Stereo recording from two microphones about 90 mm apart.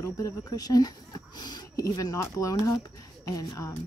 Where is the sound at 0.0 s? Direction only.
40° left (ahead or behind).